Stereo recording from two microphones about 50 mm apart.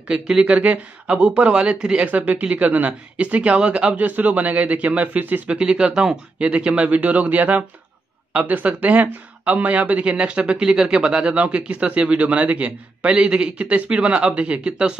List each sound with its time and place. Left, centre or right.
0.1 s speech: centre
0.5 s a man's voice: right
2.0 s speech: right
5.6 s a man's voice: centre